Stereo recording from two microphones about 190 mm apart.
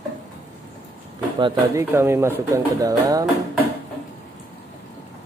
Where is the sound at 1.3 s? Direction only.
25° right (ahead or behind).